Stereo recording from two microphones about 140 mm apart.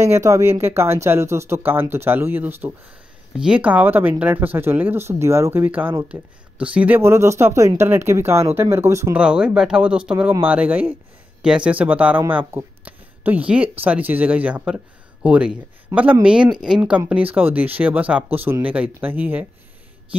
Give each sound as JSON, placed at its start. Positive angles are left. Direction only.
{"t": 0.0, "sound": "speech", "side_deg": -20}
{"t": 9.1, "sound": "speech", "side_deg": -5}